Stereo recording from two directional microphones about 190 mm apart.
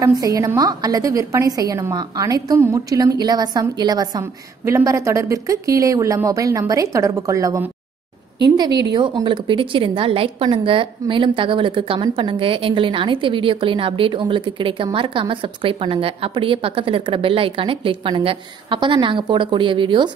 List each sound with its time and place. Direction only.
0.0 s a woman's voice: 20° right (ahead or behind)
8.9 s a woman's voice: 25° right (ahead or behind)